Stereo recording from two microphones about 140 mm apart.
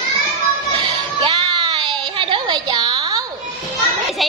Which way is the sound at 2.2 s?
35° right (ahead or behind).